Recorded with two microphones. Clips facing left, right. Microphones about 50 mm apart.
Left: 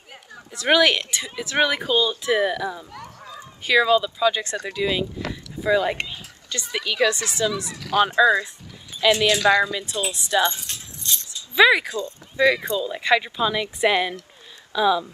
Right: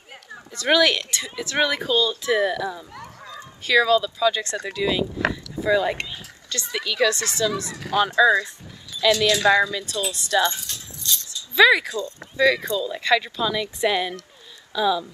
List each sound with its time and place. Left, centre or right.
0.5 s speech: centre
2.9 s honk: right
3.3 s speech: centre
5.3 s boat: centre
6.7 s a woman's voice: centre
7.5 s speech: right
7.9 s a woman's voice: left
10.6 s a sound: left
11.5 s a woman's voice: centre